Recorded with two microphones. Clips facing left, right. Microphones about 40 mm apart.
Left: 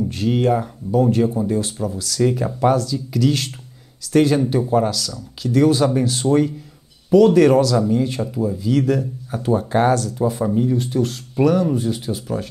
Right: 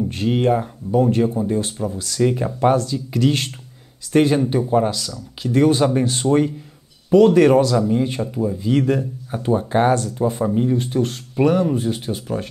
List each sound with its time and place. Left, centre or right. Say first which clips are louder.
0.1 s speech: even; right
4.6 s speech: even; centre
5.4 s speech: even; right
8.2 s speech: even; centre
8.5 s speech: even; right